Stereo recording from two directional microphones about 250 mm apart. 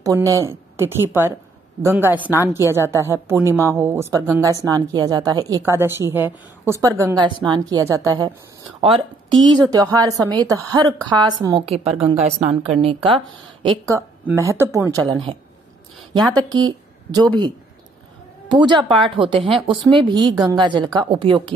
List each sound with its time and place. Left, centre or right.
0.0 s a woman's voice: centre
16.5 s speech: centre
18.6 s speech: centre